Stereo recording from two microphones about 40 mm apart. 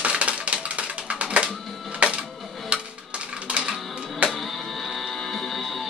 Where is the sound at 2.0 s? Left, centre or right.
Right.